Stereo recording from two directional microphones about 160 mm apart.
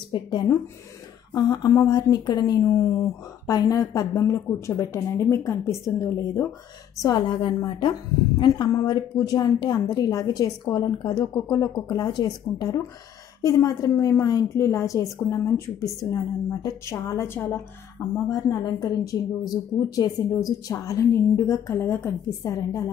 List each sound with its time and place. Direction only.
0.1 s a woman's voice: 30° left (ahead or behind)